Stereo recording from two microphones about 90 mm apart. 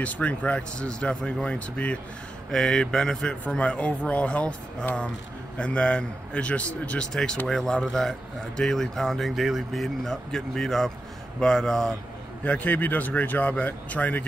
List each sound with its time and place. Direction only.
0.0 s a man's voice: 15° left (ahead or behind)
7.1 s a man's voice: 5° left (ahead or behind)
12.4 s a man's voice: 15° left (ahead or behind)